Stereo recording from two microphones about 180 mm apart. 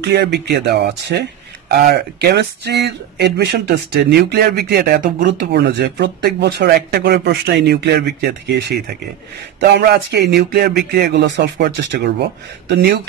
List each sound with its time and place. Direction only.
0.0 s speech: 70° right (ahead or behind)
11.5 s speech: 60° right (ahead or behind)